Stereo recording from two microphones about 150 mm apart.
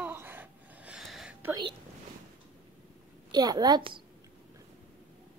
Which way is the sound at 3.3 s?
25° right (ahead or behind).